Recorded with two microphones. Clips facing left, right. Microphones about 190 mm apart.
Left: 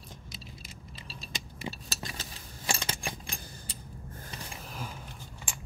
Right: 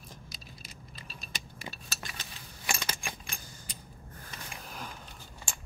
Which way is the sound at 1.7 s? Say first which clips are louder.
Left 4 dB; 35° left (ahead or behind).